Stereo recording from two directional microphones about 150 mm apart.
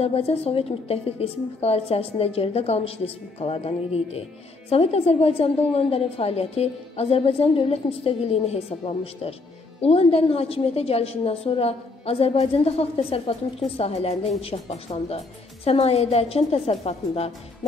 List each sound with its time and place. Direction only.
0.0 s a woman's voice: 40° left (ahead or behind)
3.3 s music: 40° left (ahead or behind)
4.6 s a woman's voice: 40° left (ahead or behind)